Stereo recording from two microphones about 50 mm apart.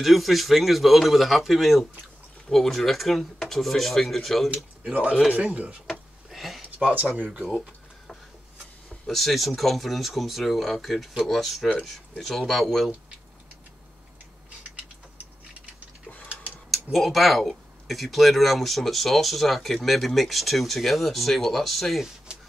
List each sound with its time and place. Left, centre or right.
0.0 s speech: centre
4.9 s speech: right
6.3 s a sound: centre
9.0 s speech: centre
16.7 s speech: centre